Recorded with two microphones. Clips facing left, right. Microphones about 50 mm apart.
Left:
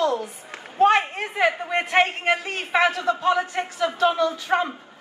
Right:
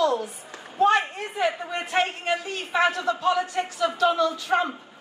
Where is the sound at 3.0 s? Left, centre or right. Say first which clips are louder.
Left 2 dB; left.